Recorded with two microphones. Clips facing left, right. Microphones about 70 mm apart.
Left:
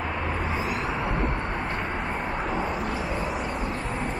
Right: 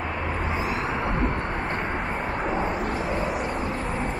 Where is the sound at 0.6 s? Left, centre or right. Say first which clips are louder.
Right 1 dB; centre.